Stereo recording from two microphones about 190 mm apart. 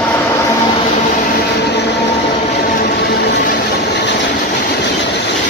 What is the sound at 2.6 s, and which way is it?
Vehicle, 45° left (ahead or behind).